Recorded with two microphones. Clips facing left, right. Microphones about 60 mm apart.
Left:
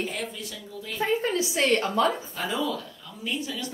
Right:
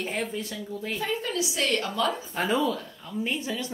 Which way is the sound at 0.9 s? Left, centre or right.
Left.